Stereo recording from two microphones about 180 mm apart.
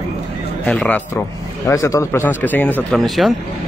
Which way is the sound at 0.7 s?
10° left (ahead or behind).